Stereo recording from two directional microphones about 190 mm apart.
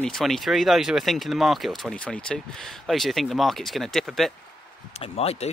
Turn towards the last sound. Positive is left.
turn(degrees=35)  # may be behind; listen again after turning